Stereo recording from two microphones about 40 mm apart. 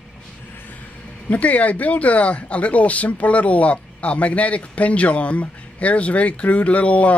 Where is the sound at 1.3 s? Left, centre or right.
Left.